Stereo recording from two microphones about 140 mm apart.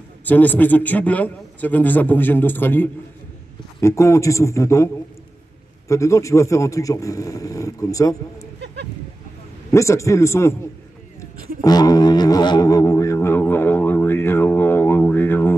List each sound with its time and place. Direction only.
0.2 s a man's voice: 10° left (ahead or behind)
9.7 s a man's voice: 20° left (ahead or behind)
11.6 s speech: 25° left (ahead or behind)